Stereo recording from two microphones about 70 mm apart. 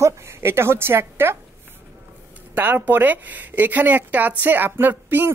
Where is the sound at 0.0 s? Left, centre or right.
Right.